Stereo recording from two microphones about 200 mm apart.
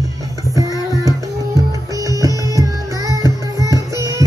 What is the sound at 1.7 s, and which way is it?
Music, 15° right (ahead or behind).